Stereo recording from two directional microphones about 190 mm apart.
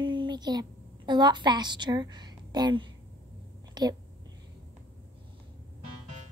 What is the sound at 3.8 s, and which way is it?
Speech, 20° right (ahead or behind).